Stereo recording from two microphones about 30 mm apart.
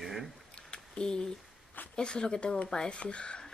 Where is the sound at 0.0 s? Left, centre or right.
Centre.